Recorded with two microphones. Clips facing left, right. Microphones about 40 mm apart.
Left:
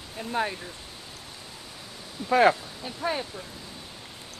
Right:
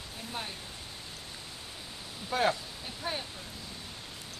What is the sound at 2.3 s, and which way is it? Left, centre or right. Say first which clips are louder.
Speech: left 9 dB; left.